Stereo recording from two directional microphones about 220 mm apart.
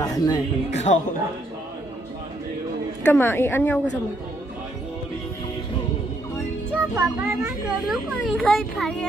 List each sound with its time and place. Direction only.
0.0 s music: 15° left (ahead or behind)
0.7 s a woman's voice: 30° left (ahead or behind)
3.1 s a woman's voice: 10° left (ahead or behind)
6.7 s a child's voice: 5° right (ahead or behind)